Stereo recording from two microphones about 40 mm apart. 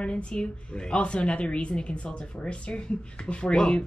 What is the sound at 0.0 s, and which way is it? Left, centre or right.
A woman's voice, left.